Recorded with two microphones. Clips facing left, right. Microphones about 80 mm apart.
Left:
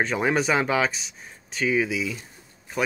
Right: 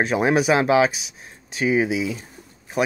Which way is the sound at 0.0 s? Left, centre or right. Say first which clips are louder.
Right 4 dB; centre.